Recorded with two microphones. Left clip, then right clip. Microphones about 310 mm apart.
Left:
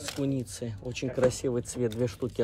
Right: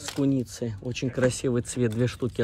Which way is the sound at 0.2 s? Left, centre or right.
Centre.